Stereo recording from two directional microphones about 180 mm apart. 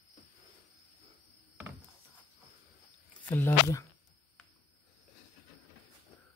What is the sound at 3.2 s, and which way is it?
Speech, 10° left (ahead or behind).